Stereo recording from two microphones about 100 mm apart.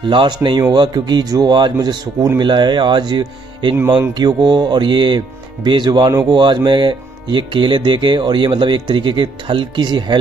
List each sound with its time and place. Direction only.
0.1 s speech: 50° right (ahead or behind)